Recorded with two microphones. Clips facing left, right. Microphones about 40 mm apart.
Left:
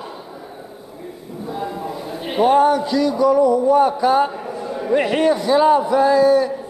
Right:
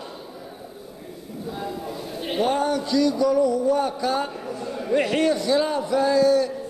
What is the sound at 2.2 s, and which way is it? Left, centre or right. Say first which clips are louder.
A man's voice: left 8 dB; centre.